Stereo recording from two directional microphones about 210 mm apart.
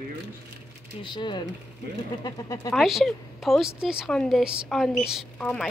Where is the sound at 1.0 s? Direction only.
20° left (ahead or behind).